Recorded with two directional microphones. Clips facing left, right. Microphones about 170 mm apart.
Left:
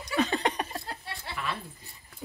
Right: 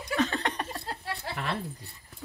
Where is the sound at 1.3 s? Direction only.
65° right (ahead or behind).